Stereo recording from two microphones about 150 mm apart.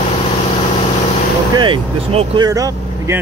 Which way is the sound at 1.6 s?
30° right (ahead or behind).